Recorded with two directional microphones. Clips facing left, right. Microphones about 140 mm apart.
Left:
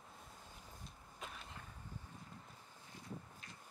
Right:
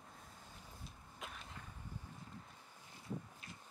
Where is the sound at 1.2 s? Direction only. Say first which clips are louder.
Even; centre (ahead or behind).